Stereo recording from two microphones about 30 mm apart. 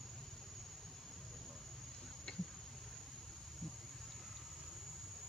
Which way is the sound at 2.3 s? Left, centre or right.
Left.